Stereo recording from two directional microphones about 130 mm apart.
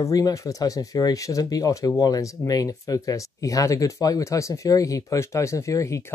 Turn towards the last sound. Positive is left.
turn(degrees=25)  # may be behind; listen again after turning